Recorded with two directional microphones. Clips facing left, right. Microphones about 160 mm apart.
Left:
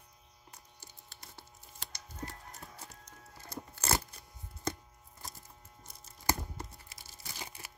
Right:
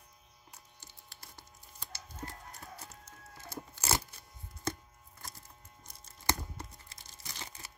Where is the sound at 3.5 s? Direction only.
10° right (ahead or behind).